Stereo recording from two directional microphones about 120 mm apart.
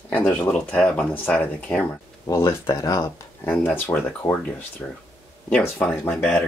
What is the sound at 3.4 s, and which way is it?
Speech, 15° left (ahead or behind).